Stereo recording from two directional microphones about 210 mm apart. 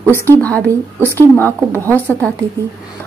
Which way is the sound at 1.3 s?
10° left (ahead or behind).